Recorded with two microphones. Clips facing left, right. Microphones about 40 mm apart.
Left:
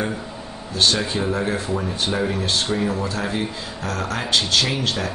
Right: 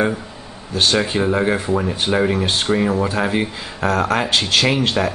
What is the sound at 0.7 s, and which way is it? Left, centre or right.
Speech, right.